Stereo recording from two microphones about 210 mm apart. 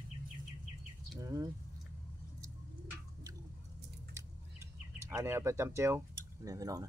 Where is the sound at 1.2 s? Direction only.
15° right (ahead or behind).